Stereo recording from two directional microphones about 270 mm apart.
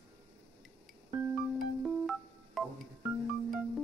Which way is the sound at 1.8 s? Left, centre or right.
Centre.